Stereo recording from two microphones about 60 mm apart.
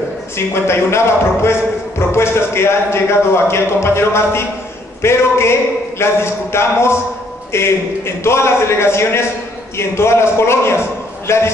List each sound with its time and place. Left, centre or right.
0.7 s speech: left